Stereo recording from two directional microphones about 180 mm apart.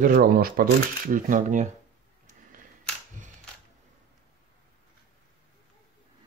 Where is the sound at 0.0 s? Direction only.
50° right (ahead or behind).